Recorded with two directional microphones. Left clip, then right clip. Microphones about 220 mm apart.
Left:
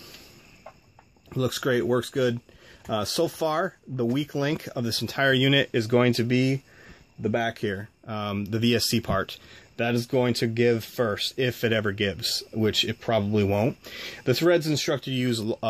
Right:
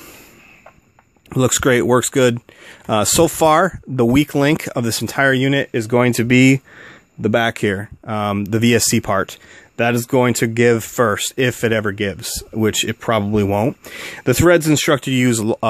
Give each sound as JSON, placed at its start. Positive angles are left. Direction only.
{"t": 1.3, "sound": "speech", "side_deg": -45}